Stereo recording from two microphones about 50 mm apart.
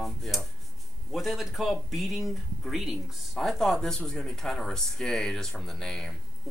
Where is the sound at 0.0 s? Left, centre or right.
Centre.